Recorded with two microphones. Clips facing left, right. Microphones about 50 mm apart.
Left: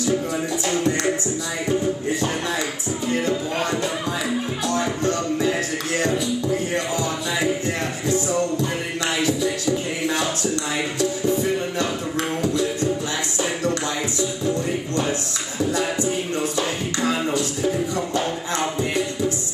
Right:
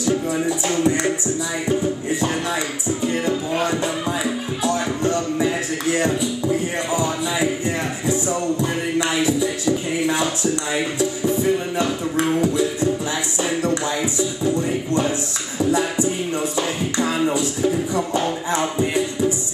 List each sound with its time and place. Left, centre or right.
0.5 s music: centre
11.8 s beatboxing: centre
16.5 s music: centre